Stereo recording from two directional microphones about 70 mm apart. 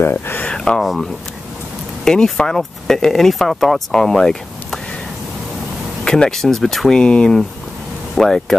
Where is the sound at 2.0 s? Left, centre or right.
Centre.